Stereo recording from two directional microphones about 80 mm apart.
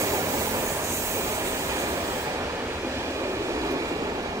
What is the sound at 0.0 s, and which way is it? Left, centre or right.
Train, right.